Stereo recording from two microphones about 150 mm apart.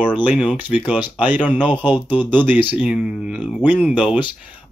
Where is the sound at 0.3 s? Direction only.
10° right (ahead or behind).